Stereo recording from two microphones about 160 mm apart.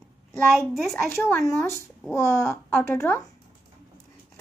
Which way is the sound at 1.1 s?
15° left (ahead or behind).